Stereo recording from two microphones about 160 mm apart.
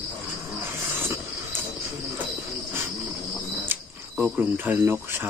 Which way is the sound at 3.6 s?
10° right (ahead or behind).